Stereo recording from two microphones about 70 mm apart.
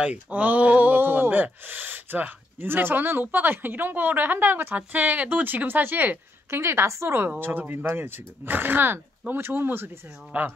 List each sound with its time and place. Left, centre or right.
0.0 s speech: right
6.5 s a woman's voice: right
7.2 s a woman's voice: right